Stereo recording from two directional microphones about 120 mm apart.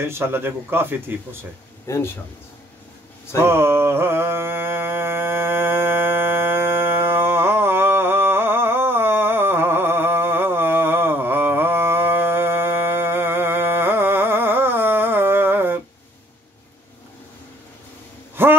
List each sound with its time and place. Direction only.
0.0 s speech: 20° right (ahead or behind)
1.9 s speech: 20° left (ahead or behind)
3.4 s music: 20° right (ahead or behind)
18.3 s a sound: 20° right (ahead or behind)